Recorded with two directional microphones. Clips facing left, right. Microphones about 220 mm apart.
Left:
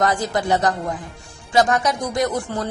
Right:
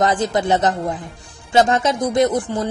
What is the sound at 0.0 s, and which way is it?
A woman's voice, 20° right (ahead or behind).